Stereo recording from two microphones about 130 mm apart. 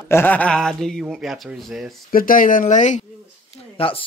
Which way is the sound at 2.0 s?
90° left.